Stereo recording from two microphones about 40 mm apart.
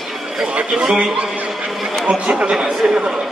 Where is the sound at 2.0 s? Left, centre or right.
Right.